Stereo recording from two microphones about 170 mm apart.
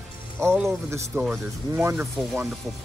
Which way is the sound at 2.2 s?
Centre (ahead or behind).